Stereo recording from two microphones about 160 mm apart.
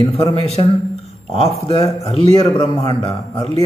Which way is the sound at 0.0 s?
35° left (ahead or behind).